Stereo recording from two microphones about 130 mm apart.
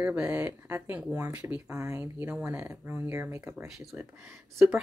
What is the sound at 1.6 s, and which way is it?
Speech, 25° right (ahead or behind).